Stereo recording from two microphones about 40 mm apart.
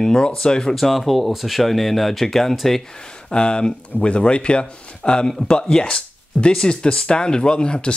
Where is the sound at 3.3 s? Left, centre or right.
Left.